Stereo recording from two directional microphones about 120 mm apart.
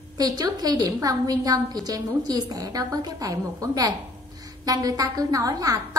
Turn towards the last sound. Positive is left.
turn(degrees=-30)  # may be behind; listen again after turning